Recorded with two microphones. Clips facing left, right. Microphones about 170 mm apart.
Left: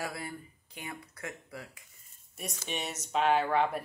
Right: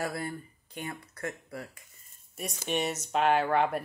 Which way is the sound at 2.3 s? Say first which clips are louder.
Right 6 dB; centre (ahead or behind).